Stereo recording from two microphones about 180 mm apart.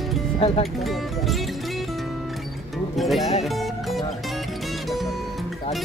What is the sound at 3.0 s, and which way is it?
Speech, centre (ahead or behind).